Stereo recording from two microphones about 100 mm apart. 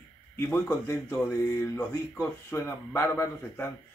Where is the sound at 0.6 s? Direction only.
25° left (ahead or behind).